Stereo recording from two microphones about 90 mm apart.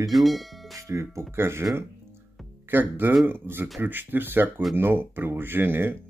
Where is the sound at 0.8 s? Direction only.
35° right (ahead or behind).